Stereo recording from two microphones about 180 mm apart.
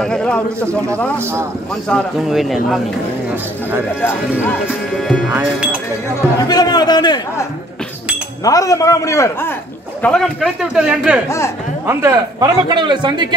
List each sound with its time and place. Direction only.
0.0 s a man's voice: 5° left (ahead or behind)
1.9 s a man's voice: centre (ahead or behind)
4.6 s speech: centre (ahead or behind)
6.3 s a man's voice: 20° left (ahead or behind)
8.5 s a man's voice: 20° left (ahead or behind)
10.0 s a man's voice: 5° left (ahead or behind)
11.2 s a man's voice: 15° left (ahead or behind)
11.8 s a man's voice: 15° right (ahead or behind)